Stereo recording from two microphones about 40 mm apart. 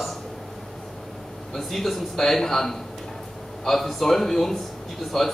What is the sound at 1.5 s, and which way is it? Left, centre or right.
A man's voice, centre.